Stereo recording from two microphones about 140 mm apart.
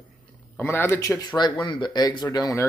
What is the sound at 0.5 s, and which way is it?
Speech, 15° left (ahead or behind).